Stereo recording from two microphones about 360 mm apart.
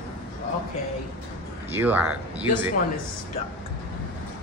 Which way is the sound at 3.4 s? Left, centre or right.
Centre.